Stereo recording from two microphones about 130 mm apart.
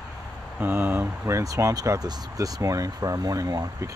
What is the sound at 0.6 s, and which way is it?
Speech, 15° right (ahead or behind).